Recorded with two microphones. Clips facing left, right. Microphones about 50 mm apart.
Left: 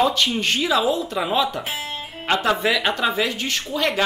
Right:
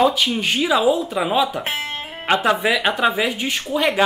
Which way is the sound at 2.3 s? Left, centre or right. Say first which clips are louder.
Right 2 dB; centre.